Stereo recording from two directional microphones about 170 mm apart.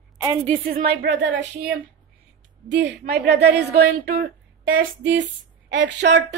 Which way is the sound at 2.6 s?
90° right.